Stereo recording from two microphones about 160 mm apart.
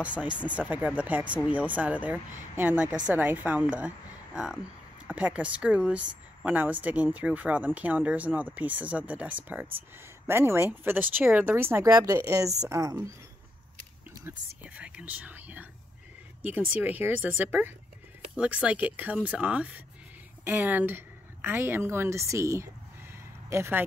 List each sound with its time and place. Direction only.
0.0 s speech: 10° right (ahead or behind)
14.8 s speech: 10° right (ahead or behind)